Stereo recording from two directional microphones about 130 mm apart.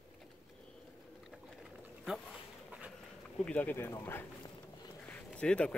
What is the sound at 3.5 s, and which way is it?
A man's voice, 10° left (ahead or behind).